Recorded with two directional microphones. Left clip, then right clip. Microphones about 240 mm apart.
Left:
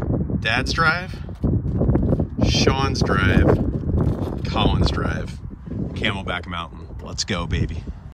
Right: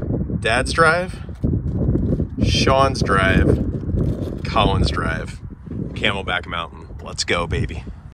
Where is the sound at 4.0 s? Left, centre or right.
Left.